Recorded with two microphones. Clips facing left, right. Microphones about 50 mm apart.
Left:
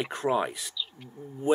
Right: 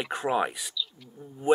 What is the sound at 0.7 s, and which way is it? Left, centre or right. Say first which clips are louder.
Speech: right 2 dB; left.